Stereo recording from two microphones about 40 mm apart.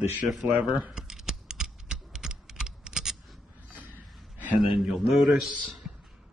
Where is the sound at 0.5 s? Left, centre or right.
Right.